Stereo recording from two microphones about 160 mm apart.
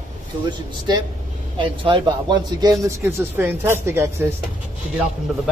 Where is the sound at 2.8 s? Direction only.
15° right (ahead or behind).